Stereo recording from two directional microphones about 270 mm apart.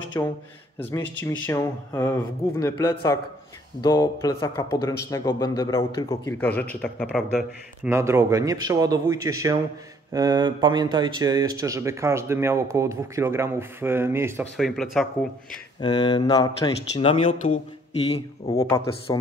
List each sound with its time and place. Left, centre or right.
0.2 s a man's voice: centre
1.0 s speech: left
1.4 s a man's voice: centre
7.9 s speech: centre
15.8 s a man's voice: centre
18.6 s speech: centre